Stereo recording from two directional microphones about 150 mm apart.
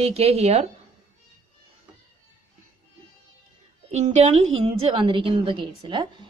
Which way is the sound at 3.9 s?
50° right (ahead or behind).